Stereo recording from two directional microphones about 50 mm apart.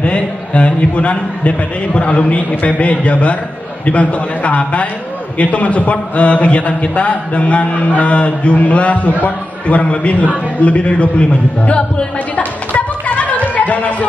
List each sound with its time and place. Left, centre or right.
0.0 s a man's voice: left